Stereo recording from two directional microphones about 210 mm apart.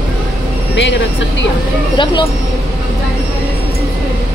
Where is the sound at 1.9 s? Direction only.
20° left (ahead or behind).